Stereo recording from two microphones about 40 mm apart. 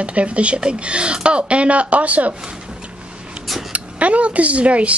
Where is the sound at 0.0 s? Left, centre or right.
Right.